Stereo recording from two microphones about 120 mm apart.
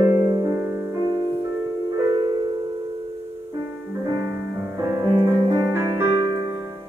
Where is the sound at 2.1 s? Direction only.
30° right (ahead or behind).